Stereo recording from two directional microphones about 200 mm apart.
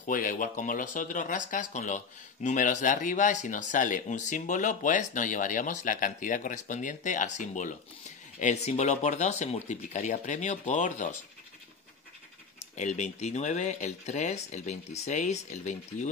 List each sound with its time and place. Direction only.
0.0 s speech: 40° left (ahead or behind)
12.7 s speech: 35° left (ahead or behind)